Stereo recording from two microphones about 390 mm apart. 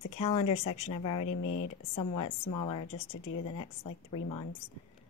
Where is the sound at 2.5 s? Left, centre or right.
Left.